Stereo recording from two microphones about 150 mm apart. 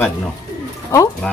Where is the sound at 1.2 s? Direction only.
10° left (ahead or behind).